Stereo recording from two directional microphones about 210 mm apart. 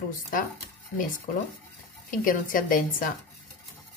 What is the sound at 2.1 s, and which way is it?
Speech, 40° left (ahead or behind).